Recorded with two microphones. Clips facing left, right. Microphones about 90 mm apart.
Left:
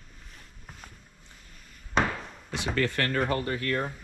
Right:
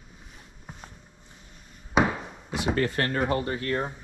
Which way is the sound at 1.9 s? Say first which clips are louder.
Right 3 dB; 5° right (ahead or behind).